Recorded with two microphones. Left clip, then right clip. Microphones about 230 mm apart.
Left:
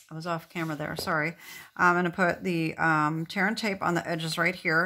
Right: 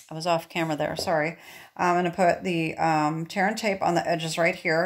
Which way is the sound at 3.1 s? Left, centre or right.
Centre.